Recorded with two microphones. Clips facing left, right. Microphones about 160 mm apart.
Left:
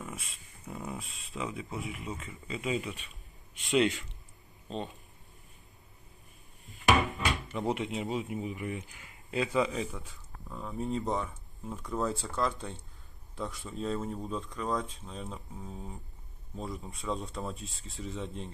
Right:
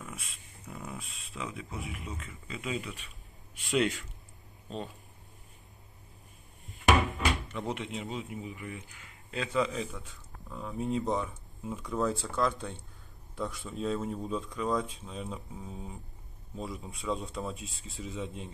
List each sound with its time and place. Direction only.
0.0 s a man's voice: centre (ahead or behind)
6.7 s cupboard open or close: centre (ahead or behind)
7.8 s speech: 20° left (ahead or behind)
9.3 s a man's voice: 5° left (ahead or behind)